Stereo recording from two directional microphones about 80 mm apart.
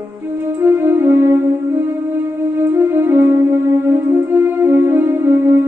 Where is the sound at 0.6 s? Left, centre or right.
Right.